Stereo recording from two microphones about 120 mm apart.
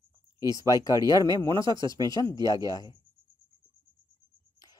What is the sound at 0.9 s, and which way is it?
Speech, 30° right (ahead or behind).